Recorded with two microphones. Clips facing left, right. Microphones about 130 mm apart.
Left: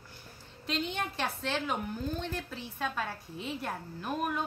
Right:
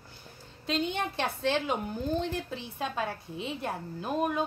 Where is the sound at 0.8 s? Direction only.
20° right (ahead or behind).